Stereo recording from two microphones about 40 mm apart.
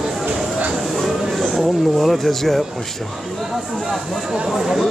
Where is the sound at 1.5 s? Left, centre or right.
Centre.